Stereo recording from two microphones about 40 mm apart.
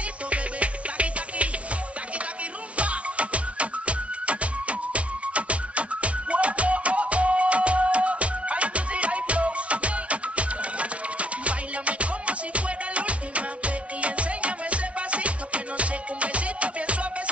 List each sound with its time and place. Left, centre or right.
0.3 s music: right
2.8 s music: right